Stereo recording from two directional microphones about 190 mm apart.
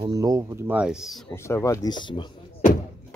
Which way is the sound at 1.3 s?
15° left (ahead or behind).